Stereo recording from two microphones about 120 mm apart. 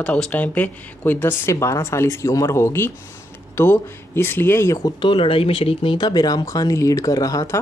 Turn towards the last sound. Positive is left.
turn(degrees=30)  # may be behind; listen again after turning